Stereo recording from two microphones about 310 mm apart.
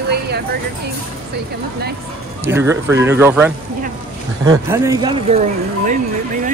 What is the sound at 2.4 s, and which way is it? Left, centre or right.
Speech, centre.